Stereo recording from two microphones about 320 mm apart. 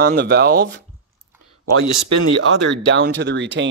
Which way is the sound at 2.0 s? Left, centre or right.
Right.